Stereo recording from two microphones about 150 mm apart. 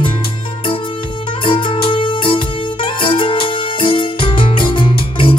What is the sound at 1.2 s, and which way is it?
Music, 35° left (ahead or behind).